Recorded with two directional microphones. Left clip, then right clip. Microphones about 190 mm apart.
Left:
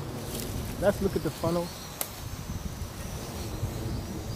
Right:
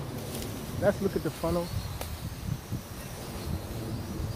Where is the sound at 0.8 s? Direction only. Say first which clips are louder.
Left 1 dB; 5° left (ahead or behind).